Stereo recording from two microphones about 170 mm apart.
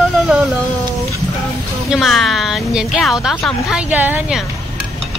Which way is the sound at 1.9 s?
Centre (ahead or behind).